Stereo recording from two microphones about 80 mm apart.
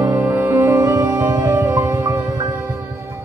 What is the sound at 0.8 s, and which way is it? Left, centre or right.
Music, right.